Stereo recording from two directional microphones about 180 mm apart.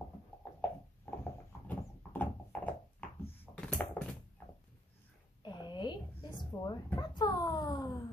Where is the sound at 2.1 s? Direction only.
10° left (ahead or behind).